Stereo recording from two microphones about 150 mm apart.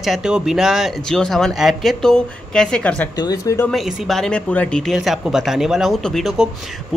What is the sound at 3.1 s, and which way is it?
Speech, 25° left (ahead or behind).